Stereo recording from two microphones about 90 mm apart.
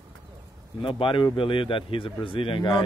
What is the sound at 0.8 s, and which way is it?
Speech, 75° left (ahead or behind).